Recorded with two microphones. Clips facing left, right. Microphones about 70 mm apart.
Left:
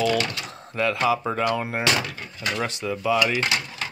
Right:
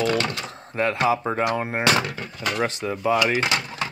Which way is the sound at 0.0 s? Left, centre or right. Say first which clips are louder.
Even; right.